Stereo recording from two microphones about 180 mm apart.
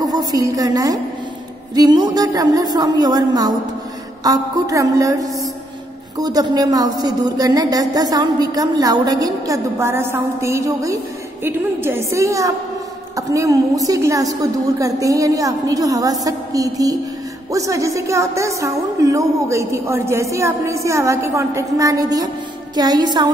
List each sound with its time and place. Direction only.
0.0 s a woman's voice: 20° right (ahead or behind)